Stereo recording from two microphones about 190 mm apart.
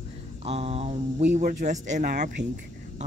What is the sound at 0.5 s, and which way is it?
Speech, 30° right (ahead or behind).